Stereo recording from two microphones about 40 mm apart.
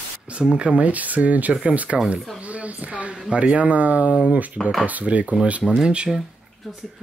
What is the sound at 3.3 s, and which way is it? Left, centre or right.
Speech, right.